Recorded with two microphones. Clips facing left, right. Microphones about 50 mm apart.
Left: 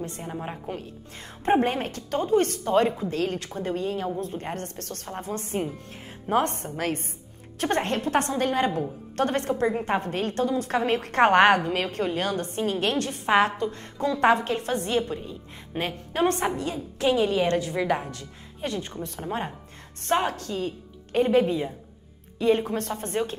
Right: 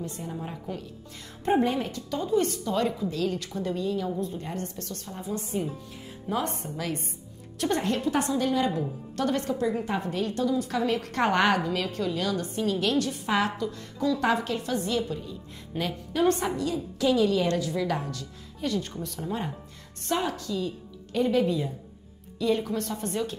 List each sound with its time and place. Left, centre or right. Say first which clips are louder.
0.0 s a woman's voice: left 2 dB; left